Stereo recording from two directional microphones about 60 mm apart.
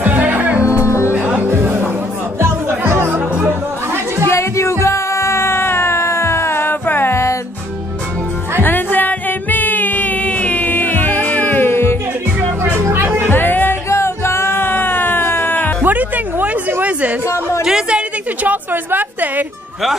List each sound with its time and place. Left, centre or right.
0.0 s music: right
0.8 s music: left
1.5 s music: right
4.3 s music: left
8.6 s music: left
12.7 s music: right
13.3 s music: left
13.8 s music: left
15.8 s music: right
17.3 s a sound: left
17.6 s a sound: centre; by 19.4 s right